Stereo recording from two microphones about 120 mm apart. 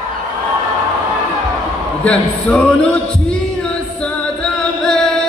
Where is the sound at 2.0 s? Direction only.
10° left (ahead or behind).